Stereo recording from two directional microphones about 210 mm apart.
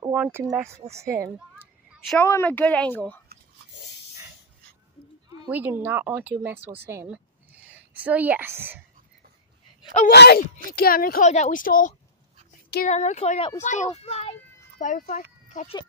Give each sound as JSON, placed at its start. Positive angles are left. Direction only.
{"t": 0.1, "sound": "speech", "side_deg": -10}
{"t": 1.6, "sound": "speech", "side_deg": 10}
{"t": 5.3, "sound": "speech", "side_deg": -15}
{"t": 10.1, "sound": "a child's voice", "side_deg": 50}
{"t": 15.4, "sound": "a sound", "side_deg": 35}